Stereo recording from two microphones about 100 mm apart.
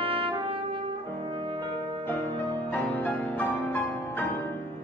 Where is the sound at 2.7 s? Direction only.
15° left (ahead or behind).